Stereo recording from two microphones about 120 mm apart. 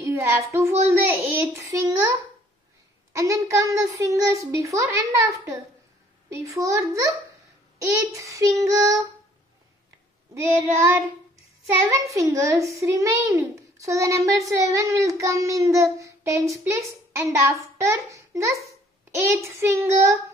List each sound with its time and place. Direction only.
0.0 s child singing: 20° right (ahead or behind)
0.8 s a child's voice: 25° right (ahead or behind)
6.3 s a child's voice: 25° right (ahead or behind)
10.4 s a child's voice: 25° right (ahead or behind)